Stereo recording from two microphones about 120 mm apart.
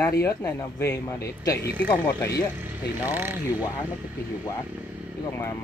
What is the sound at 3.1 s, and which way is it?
Speech, 15° right (ahead or behind).